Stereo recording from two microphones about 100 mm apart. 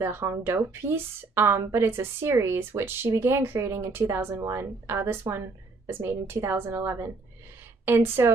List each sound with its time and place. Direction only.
0.0 s a woman's voice: 25° right (ahead or behind)